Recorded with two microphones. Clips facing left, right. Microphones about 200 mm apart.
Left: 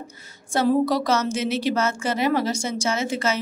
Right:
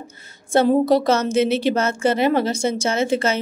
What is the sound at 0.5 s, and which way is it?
A woman's voice, 25° right (ahead or behind).